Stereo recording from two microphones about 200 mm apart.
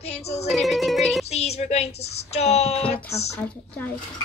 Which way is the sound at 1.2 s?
30° left (ahead or behind).